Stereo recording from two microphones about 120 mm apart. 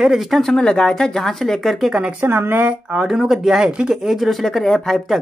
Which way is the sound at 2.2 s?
20° right (ahead or behind).